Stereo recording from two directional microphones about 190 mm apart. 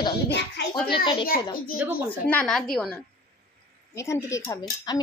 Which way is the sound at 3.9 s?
15° left (ahead or behind).